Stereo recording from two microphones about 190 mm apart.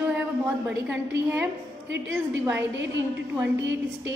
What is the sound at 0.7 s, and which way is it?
A woman's voice, 10° right (ahead or behind).